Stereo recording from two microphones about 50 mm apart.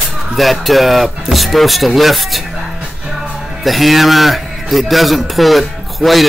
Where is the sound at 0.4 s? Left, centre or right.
Centre.